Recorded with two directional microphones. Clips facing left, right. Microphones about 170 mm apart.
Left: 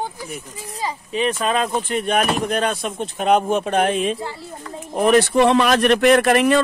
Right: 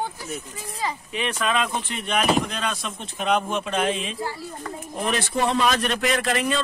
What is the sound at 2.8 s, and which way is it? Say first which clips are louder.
Speech: left 6 dB; 45° left (ahead or behind).